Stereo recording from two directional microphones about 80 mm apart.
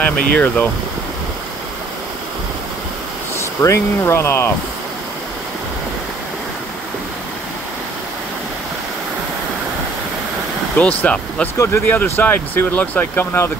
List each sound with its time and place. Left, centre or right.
0.0 s speech: centre
3.6 s speech: left
10.8 s speech: centre
11.5 s speech: left
11.9 s speech: left